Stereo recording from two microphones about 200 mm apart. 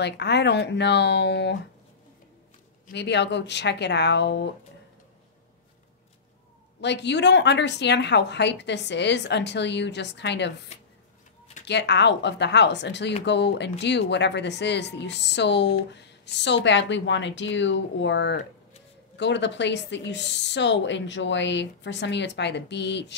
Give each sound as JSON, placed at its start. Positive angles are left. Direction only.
{"t": 0.0, "sound": "a woman's voice", "side_deg": 55}
{"t": 2.9, "sound": "a woman's voice", "side_deg": 60}
{"t": 6.8, "sound": "a woman's voice", "side_deg": 60}
{"t": 10.7, "sound": "a sound", "side_deg": 35}
{"t": 11.6, "sound": "a woman's voice", "side_deg": 60}